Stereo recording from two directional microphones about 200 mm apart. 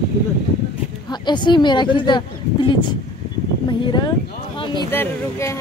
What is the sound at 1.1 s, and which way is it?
Speech, 20° left (ahead or behind).